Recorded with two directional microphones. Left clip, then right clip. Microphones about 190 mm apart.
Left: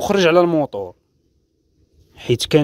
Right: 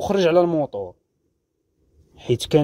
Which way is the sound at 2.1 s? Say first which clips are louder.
Left 3 dB; 15° left (ahead or behind).